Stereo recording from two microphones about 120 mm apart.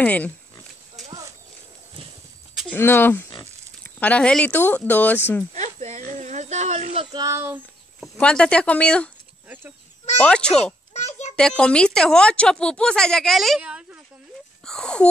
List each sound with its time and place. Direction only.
0.0 s a woman's voice: 15° left (ahead or behind)
2.7 s a woman's voice: 15° left (ahead or behind)
5.5 s a sound: 75° right (ahead or behind)
7.0 s speech: 40° right (ahead or behind)
7.2 s speech: 20° right (ahead or behind)
8.0 s a woman's voice: 10° left (ahead or behind)
10.2 s a woman's voice: 10° left (ahead or behind)
10.6 s children playing: 70° left (ahead or behind)
11.3 s a woman's voice: 5° left (ahead or behind)
13.6 s speech: 10° right (ahead or behind)
14.6 s speech: 5° left (ahead or behind)